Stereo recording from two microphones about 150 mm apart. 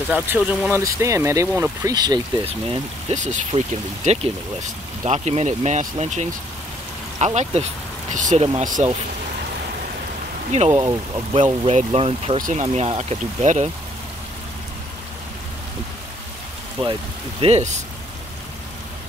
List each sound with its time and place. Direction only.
0.3 s speech: 5° right (ahead or behind)
0.7 s speech: 20° right (ahead or behind)
2.0 s speech: 25° right (ahead or behind)
2.4 s speech: 45° right (ahead or behind); by 8.8 s 60° right (ahead or behind)
10.8 s speech: 35° right (ahead or behind)
12.4 s speech: 60° right (ahead or behind)
12.6 s speech: 45° right (ahead or behind)
16.8 s speech: 40° right (ahead or behind)